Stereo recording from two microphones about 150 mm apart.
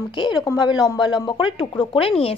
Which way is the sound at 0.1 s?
30° left (ahead or behind).